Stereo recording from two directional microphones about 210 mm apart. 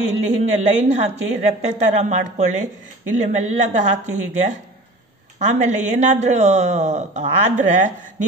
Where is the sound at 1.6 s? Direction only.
35° right (ahead or behind).